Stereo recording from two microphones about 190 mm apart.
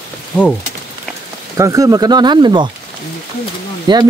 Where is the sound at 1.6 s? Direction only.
20° right (ahead or behind).